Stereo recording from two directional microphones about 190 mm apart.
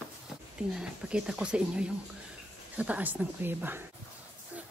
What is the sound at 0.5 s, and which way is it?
Speech, 5° right (ahead or behind).